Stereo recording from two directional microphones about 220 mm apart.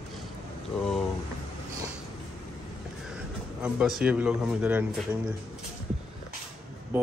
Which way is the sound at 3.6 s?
5° right (ahead or behind).